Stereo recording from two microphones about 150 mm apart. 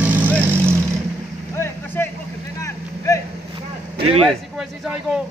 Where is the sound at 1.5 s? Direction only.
15° left (ahead or behind).